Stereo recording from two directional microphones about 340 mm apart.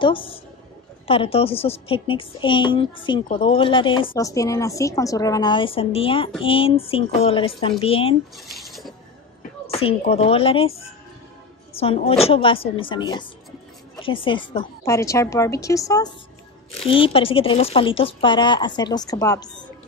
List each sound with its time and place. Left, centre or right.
0.0 s a woman's voice: centre
8.4 s speech: centre
9.7 s a woman's voice: centre
11.8 s a woman's voice: centre